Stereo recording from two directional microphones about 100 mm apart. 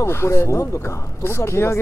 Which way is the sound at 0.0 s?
25° left (ahead or behind).